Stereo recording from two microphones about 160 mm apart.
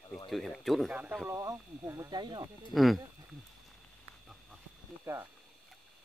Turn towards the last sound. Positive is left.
turn(degrees=-15)  # may be behind; listen again after turning